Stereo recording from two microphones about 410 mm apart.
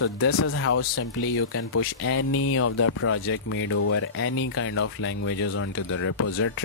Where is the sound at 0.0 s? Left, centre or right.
Left.